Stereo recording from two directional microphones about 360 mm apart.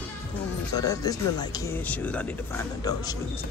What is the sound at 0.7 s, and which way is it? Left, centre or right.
Speech, centre.